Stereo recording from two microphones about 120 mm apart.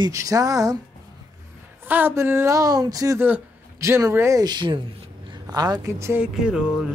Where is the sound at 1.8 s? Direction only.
15° right (ahead or behind).